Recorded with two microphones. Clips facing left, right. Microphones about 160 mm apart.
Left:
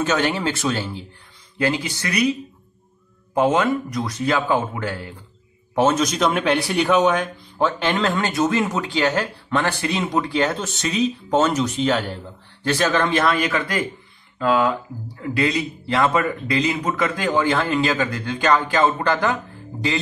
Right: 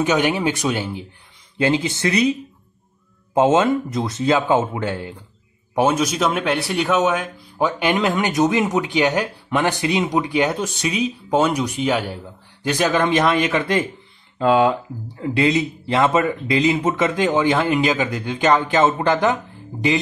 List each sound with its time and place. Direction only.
0.0 s a man's voice: 15° right (ahead or behind)
3.3 s speech: 20° right (ahead or behind)
5.8 s a man's voice: 10° right (ahead or behind)